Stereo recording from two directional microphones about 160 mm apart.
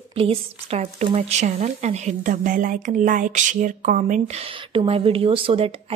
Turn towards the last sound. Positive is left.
turn(degrees=-35)  # may be behind; listen again after turning